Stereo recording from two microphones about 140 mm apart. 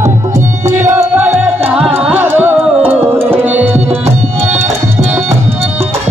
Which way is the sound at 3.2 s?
10° right (ahead or behind).